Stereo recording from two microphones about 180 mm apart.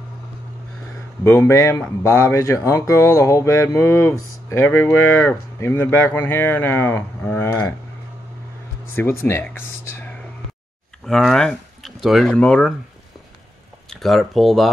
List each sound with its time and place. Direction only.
1.2 s speech: 15° left (ahead or behind)
8.9 s speech: 10° left (ahead or behind)
13.8 s speech: centre (ahead or behind)